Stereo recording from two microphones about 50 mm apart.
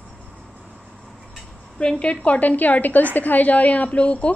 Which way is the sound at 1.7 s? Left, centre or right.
Left.